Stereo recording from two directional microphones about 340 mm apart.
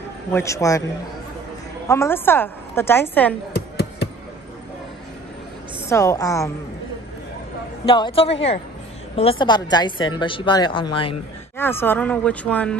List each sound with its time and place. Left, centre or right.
0.3 s a woman's voice: centre
1.9 s a woman's voice: centre
3.5 s a sound: left
5.9 s a woman's voice: centre
7.8 s a woman's voice: centre